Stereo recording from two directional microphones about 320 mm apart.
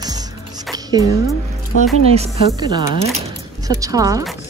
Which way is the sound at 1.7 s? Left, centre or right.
Left.